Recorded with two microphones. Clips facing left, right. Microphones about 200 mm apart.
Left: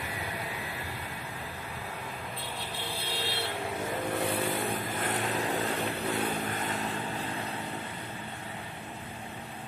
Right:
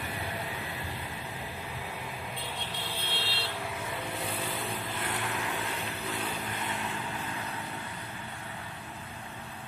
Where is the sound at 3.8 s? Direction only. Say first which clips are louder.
Left 5 dB; 50° left (ahead or behind).